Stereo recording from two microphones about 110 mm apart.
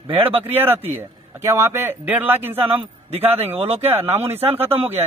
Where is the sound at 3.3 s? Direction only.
65° right (ahead or behind).